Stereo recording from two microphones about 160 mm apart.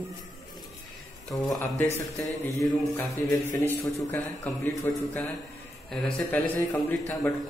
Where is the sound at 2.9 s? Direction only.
15° left (ahead or behind).